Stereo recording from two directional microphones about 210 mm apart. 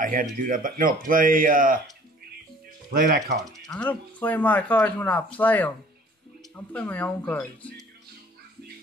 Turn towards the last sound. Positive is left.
turn(degrees=5)  # may be behind; listen again after turning